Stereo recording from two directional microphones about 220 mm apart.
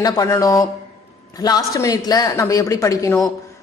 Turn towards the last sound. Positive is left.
turn(degrees=15)  # may be behind; listen again after turning